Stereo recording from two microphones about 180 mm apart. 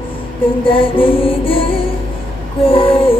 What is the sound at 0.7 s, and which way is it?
Music, 30° left (ahead or behind).